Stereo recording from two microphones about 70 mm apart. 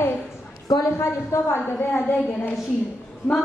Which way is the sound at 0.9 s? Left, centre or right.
Left.